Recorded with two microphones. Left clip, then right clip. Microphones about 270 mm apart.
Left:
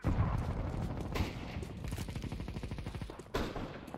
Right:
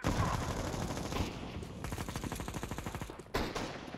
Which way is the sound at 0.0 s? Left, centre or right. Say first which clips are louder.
Right 5 dB; right.